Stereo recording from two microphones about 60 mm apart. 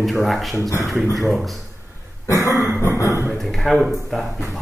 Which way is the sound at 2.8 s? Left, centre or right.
Left.